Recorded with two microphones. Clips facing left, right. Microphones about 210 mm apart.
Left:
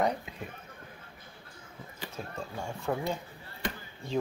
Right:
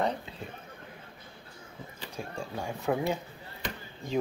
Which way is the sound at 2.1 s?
15° right (ahead or behind).